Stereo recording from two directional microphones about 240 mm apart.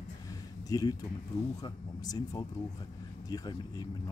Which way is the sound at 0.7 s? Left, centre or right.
Centre.